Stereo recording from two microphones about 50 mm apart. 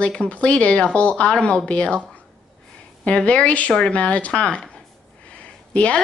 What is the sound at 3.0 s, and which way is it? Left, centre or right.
A woman's voice, left.